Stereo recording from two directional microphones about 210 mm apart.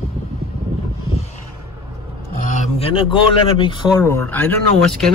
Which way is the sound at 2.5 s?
25° left (ahead or behind).